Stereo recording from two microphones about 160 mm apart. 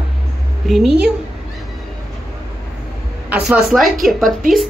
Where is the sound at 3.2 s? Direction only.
5° right (ahead or behind).